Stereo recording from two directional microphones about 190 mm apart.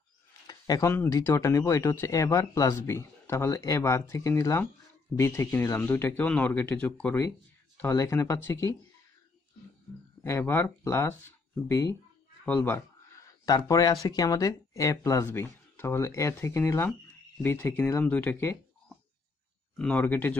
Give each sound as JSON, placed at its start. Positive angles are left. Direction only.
{"t": 0.5, "sound": "speech", "side_deg": 20}
{"t": 10.2, "sound": "speech", "side_deg": 15}